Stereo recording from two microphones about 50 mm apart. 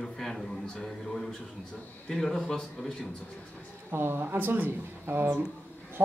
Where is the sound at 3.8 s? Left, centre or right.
Right.